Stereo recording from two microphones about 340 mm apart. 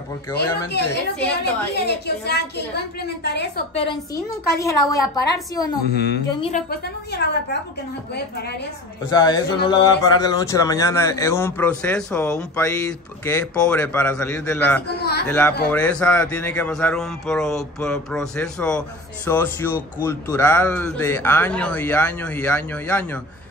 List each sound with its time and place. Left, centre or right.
0.8 s speech: centre
1.4 s a woman's voice: left
3.7 s speech: centre
5.9 s a woman's voice: left
9.1 s speech: centre